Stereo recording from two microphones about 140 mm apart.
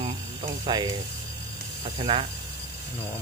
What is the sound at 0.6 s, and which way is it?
Speech, 30° right (ahead or behind).